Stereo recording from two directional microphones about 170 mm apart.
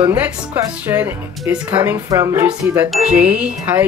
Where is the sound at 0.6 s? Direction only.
10° right (ahead or behind).